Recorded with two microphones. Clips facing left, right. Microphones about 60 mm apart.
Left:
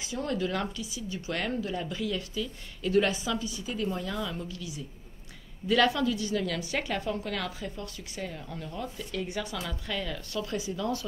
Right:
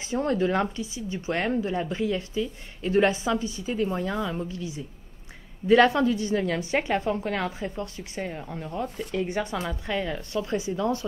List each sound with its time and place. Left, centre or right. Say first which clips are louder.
0.0 s speech: right 6 dB; right